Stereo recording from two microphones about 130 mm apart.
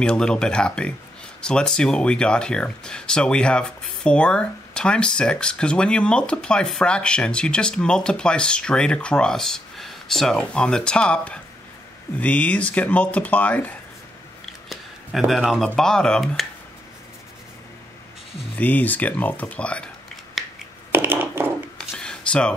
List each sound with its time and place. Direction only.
0.0 s speech: 5° left (ahead or behind)
14.7 s speech: centre (ahead or behind)
18.6 s speech: 15° left (ahead or behind)
20.4 s finger snapping: centre (ahead or behind)
20.9 s a sound: 15° right (ahead or behind)
21.7 s a sound: 5° left (ahead or behind)